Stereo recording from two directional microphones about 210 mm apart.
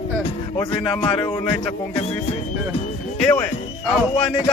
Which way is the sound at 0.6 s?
20° left (ahead or behind).